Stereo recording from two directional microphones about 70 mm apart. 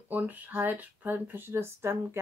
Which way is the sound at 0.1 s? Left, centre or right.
Right.